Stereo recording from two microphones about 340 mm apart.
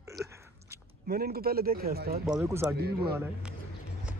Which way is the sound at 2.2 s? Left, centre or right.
Centre.